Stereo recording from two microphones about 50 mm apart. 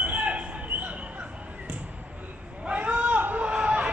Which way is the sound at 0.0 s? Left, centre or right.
Right.